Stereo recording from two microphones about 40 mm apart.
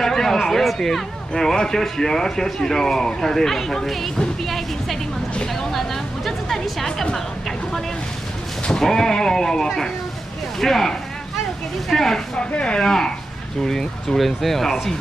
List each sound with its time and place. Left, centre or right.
0.0 s a man's voice: centre
4.5 s music: centre
5.5 s a sound: centre
8.6 s a man's voice: centre
12.4 s speech: left
12.8 s a man's voice: centre